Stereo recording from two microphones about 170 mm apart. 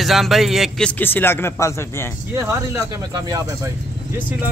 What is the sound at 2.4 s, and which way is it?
Speech, 20° right (ahead or behind).